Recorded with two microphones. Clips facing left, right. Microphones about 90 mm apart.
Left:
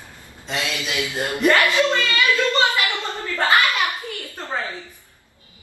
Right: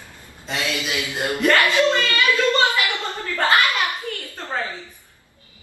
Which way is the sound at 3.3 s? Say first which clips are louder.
Even; 20° left (ahead or behind).